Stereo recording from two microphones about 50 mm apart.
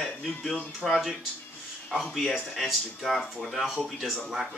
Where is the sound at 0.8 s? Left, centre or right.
Centre.